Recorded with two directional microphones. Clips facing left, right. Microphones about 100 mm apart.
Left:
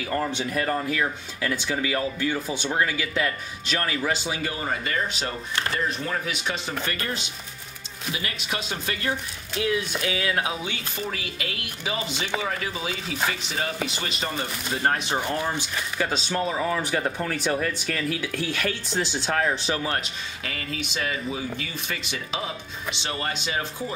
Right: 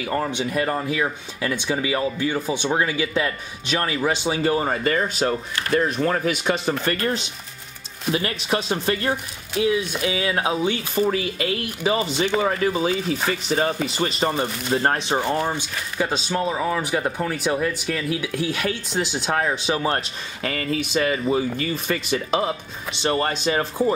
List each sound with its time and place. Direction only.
0.0 s speech: 20° right (ahead or behind); by 9.2 s 35° right (ahead or behind)
9.6 s speech: 25° right (ahead or behind)
20.4 s speech: 45° right (ahead or behind)